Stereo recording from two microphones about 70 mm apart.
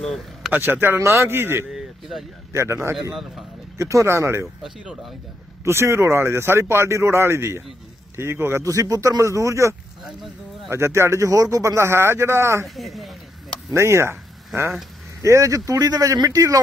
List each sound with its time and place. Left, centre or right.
0.0 s a sound: centre
0.5 s speech: right
1.7 s a sound: centre
2.5 s speech: right
5.6 s speech: right
8.6 s speech: right
12.6 s a woman's voice: centre
13.7 s speech: right
15.2 s speech: right